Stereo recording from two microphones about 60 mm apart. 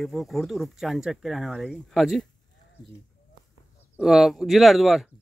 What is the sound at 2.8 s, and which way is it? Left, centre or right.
Speech, left.